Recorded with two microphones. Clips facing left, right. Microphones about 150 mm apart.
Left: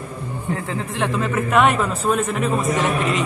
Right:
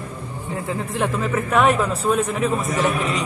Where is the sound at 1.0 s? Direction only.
Centre (ahead or behind).